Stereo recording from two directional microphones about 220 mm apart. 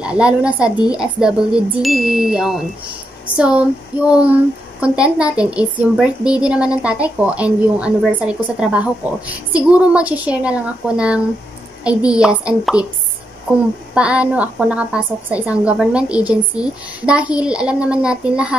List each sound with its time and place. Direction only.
0.0 s speech: 5° right (ahead or behind)
13.9 s speech: 5° right (ahead or behind)